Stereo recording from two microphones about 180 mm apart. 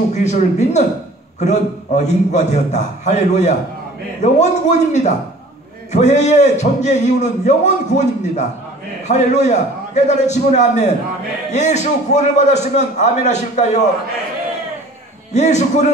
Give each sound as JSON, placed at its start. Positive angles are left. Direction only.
{"t": 0.1, "sound": "a man's voice", "side_deg": 40}
{"t": 15.3, "sound": "a man's voice", "side_deg": 40}